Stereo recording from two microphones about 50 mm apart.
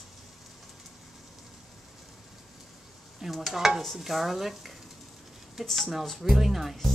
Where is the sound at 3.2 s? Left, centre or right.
Centre.